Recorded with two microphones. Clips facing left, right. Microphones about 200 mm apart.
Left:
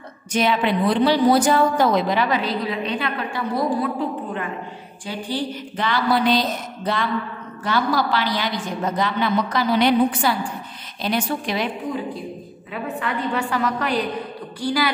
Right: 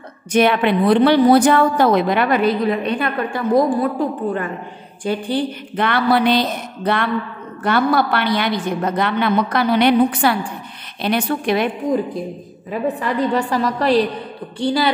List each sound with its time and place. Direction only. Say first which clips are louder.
0.3 s a woman's voice: right 5 dB; 60° right (ahead or behind)
5.0 s a woman's voice: right 6 dB; 60° right (ahead or behind)
13.2 s a woman's voice: right 5 dB; 35° right (ahead or behind)